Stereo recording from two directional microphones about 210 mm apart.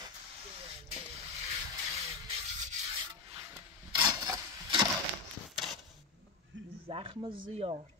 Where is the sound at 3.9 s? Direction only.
20° right (ahead or behind).